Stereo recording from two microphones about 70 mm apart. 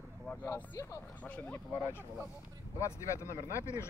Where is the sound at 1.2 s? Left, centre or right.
Left.